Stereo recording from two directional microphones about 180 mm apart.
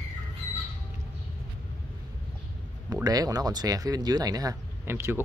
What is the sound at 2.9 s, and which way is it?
Speech, 20° right (ahead or behind).